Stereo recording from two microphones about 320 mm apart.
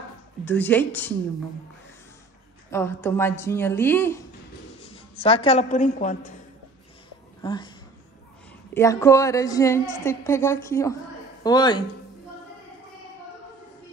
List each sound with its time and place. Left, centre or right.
0.5 s a woman's voice: centre
2.7 s a woman's voice: centre
4.8 s a woman's voice: centre
7.4 s a woman's voice: centre
8.7 s a woman's voice: centre